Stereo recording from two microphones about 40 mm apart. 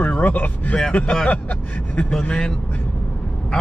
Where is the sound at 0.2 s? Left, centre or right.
Left.